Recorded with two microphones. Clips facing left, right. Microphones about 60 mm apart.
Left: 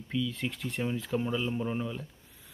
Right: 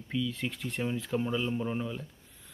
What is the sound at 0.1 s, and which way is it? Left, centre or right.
Speech, centre.